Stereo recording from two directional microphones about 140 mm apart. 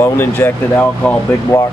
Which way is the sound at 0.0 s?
15° left (ahead or behind).